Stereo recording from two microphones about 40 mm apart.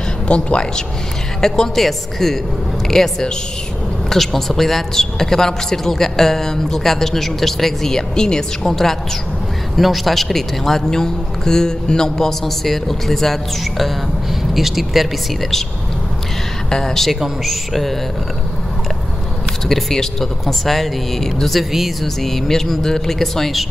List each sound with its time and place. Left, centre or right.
0.3 s speech: left
1.4 s speech: centre
16.7 s speech: centre
19.7 s speech: centre